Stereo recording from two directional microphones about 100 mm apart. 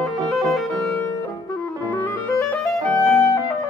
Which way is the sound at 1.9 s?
20° left (ahead or behind).